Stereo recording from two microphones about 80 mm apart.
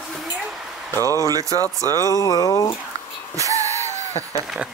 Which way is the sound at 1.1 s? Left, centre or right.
Right.